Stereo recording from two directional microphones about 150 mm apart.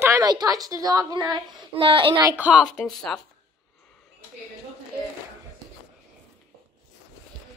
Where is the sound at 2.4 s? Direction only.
5° right (ahead or behind).